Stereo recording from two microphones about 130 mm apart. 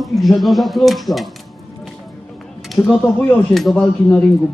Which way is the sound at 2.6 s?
Centre (ahead or behind).